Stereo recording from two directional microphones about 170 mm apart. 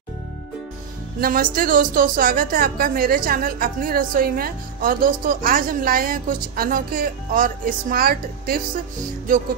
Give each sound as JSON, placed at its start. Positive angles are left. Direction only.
{"t": 1.2, "sound": "a woman's voice", "side_deg": -55}